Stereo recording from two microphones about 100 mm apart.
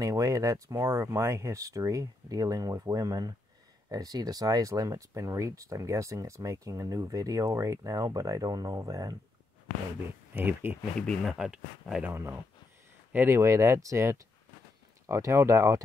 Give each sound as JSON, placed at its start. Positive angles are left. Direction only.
{"t": 0.0, "sound": "speech", "side_deg": -35}
{"t": 10.3, "sound": "speech", "side_deg": -20}
{"t": 11.0, "sound": "speech", "side_deg": 5}
{"t": 11.3, "sound": "speech", "side_deg": -5}
{"t": 12.0, "sound": "speech", "side_deg": -20}